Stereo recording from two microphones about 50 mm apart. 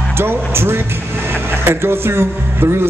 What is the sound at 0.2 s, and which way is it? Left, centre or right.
Music, right.